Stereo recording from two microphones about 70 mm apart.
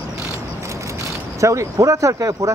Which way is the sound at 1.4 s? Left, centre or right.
Right.